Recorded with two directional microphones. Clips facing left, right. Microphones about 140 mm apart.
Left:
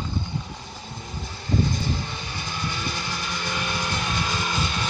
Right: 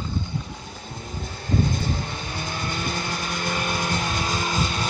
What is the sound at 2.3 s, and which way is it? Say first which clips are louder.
Vehicle: right 2 dB; 45° right (ahead or behind).